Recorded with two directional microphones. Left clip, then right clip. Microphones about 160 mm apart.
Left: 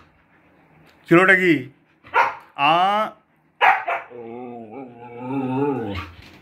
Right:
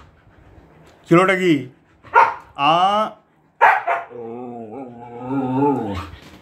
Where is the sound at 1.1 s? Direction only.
Centre (ahead or behind).